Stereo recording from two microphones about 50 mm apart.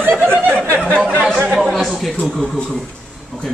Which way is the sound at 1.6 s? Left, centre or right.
Centre.